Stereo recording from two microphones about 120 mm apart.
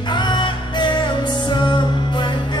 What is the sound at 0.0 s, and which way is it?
Music, 40° left (ahead or behind).